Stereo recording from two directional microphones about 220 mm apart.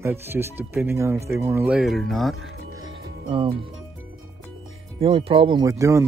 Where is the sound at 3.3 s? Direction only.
25° right (ahead or behind).